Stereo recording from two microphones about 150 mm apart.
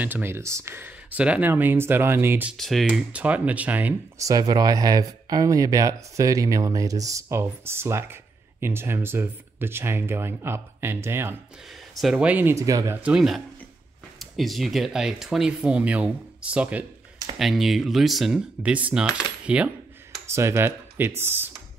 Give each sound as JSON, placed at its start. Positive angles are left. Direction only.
{"t": 0.0, "sound": "speech", "side_deg": -15}
{"t": 2.5, "sound": "speech", "side_deg": 0}
{"t": 4.2, "sound": "speech", "side_deg": -25}
{"t": 12.0, "sound": "speech", "side_deg": -5}
{"t": 20.2, "sound": "speech", "side_deg": -20}